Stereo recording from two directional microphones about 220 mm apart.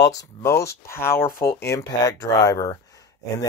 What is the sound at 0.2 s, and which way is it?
Speech, 15° left (ahead or behind).